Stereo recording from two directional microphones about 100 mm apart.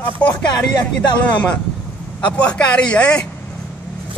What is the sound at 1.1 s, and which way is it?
Speech, 15° left (ahead or behind).